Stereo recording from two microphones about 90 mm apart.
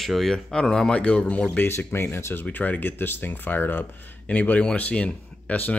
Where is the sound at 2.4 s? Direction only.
15° left (ahead or behind).